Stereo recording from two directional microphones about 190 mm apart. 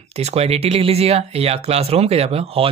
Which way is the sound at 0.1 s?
35° right (ahead or behind).